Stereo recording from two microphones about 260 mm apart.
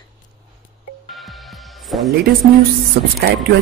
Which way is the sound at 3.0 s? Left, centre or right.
Right.